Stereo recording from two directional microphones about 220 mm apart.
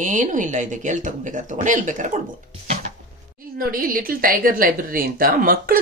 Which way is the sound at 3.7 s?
40° right (ahead or behind).